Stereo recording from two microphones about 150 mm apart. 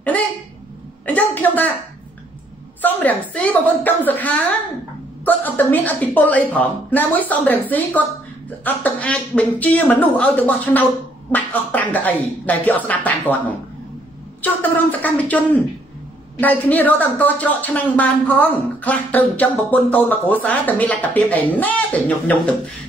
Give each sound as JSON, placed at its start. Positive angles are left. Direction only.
{"t": 1.0, "sound": "speech", "side_deg": 10}
{"t": 2.8, "sound": "speech", "side_deg": 10}
{"t": 8.6, "sound": "speech", "side_deg": 10}